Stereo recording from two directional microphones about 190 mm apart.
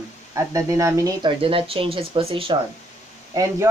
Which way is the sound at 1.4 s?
30° right (ahead or behind).